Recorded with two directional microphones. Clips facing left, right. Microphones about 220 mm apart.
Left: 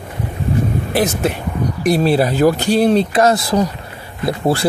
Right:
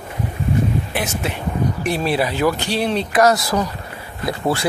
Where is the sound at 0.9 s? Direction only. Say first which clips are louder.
Left 7 dB; 40° left (ahead or behind).